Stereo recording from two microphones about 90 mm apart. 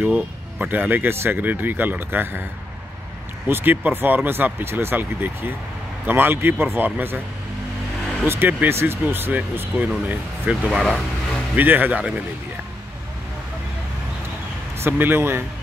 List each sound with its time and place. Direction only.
0.0 s speech: 20° right (ahead or behind)
3.4 s speech: 25° right (ahead or behind)
8.3 s speech: 20° right (ahead or behind)
10.5 s speech: centre (ahead or behind)
11.5 s speech: 20° right (ahead or behind)
14.8 s speech: 25° right (ahead or behind)